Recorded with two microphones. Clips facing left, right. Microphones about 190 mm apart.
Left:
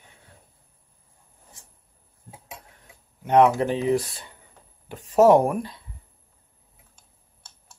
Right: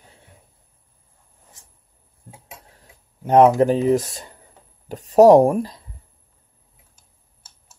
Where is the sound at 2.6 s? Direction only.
35° right (ahead or behind).